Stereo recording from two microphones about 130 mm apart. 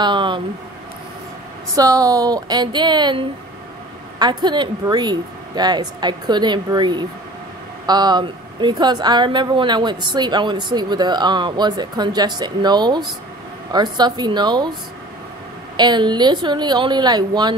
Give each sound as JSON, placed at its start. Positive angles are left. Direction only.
{"t": 0.0, "sound": "a woman's voice", "side_deg": -35}
{"t": 1.8, "sound": "a woman's voice", "side_deg": -25}
{"t": 15.7, "sound": "a woman's voice", "side_deg": -35}